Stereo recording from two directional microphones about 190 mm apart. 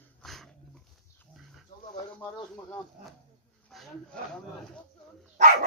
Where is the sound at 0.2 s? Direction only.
Centre (ahead or behind).